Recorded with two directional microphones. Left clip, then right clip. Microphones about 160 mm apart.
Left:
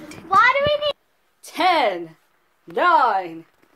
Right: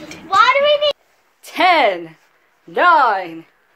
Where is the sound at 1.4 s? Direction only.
10° right (ahead or behind).